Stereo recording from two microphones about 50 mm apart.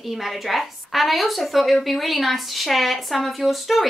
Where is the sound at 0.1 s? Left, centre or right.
Centre.